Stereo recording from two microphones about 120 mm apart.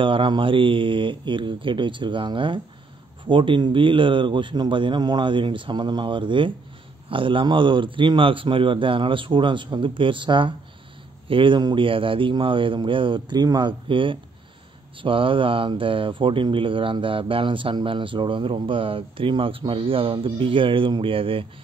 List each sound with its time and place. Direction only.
0.0 s speech: 45° right (ahead or behind)